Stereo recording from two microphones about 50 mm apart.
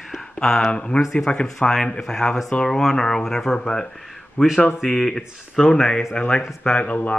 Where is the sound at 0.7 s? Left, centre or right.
Left.